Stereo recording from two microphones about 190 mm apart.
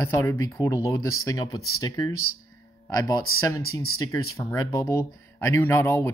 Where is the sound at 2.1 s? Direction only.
90° left.